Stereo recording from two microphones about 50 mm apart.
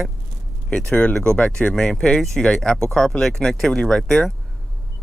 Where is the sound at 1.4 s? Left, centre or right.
Left.